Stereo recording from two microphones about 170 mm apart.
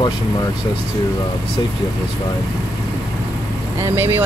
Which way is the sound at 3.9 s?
15° right (ahead or behind).